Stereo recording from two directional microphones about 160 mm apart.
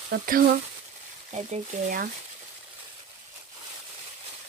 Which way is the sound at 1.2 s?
40° right (ahead or behind).